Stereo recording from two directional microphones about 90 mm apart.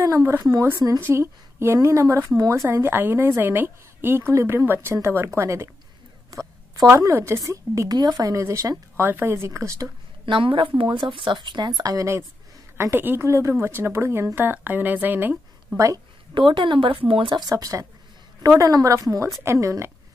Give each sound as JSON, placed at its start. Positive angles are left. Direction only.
{"t": 0.0, "sound": "a woman's voice", "side_deg": -35}
{"t": 7.0, "sound": "speech", "side_deg": -35}
{"t": 10.2, "sound": "a woman's voice", "side_deg": -70}
{"t": 12.7, "sound": "a woman's voice", "side_deg": -25}
{"t": 16.3, "sound": "a woman's voice", "side_deg": -65}
{"t": 17.1, "sound": "speech", "side_deg": -80}
{"t": 17.4, "sound": "speech", "side_deg": -45}